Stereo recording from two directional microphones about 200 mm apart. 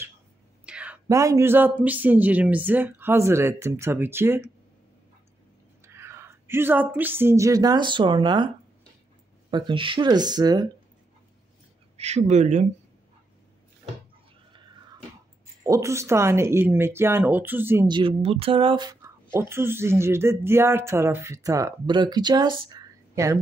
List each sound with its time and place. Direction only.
0.7 s a sound: 5° right (ahead or behind)
1.0 s speech: 15° right (ahead or behind)
5.9 s speech: 15° right (ahead or behind)
9.5 s speech: 20° right (ahead or behind)
12.0 s speech: 30° right (ahead or behind)
15.6 s speech: 15° right (ahead or behind)
17.8 s speech: 25° right (ahead or behind)